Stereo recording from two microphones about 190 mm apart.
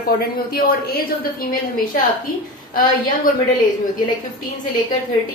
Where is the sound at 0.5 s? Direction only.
50° left (ahead or behind).